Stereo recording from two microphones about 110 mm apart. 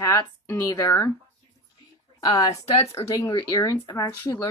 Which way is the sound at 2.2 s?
30° left (ahead or behind).